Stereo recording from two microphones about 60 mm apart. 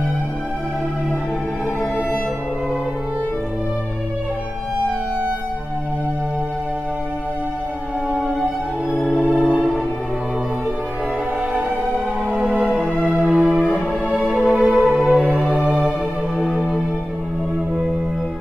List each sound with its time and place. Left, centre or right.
8.1 s music: centre
12.3 s music: centre
12.6 s music: centre
13.3 s music: centre
14.0 s music: centre